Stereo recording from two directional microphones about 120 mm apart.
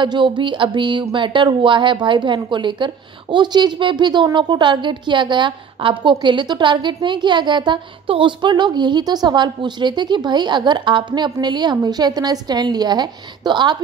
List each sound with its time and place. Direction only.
0.0 s a woman's voice: 40° right (ahead or behind)